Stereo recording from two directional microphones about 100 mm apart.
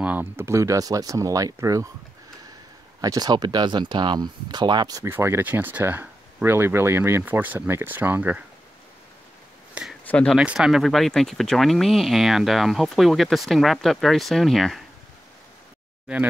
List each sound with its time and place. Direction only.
0.0 s speech: 20° right (ahead or behind)
3.0 s speech: 40° right (ahead or behind)
5.1 s speech: 25° right (ahead or behind)
10.0 s speech: 10° left (ahead or behind)
10.3 s speech: 10° right (ahead or behind)